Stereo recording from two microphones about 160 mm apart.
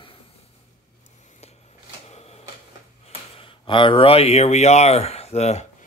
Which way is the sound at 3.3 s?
30° left (ahead or behind).